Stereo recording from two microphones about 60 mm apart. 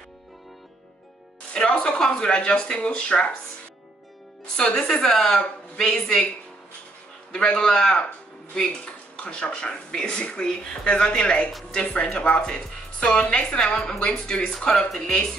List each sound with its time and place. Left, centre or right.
1.5 s a woman's voice: centre
4.6 s a woman's voice: centre
7.3 s a woman's voice: centre
8.5 s a sound: centre
9.2 s a woman's voice: centre